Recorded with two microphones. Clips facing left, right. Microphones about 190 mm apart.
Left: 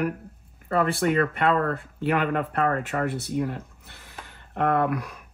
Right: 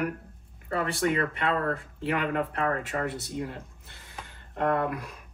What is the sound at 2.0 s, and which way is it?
Speech, 55° left (ahead or behind).